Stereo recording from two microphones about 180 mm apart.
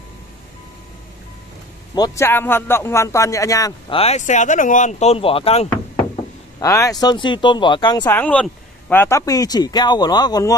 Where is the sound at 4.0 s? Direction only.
40° left (ahead or behind).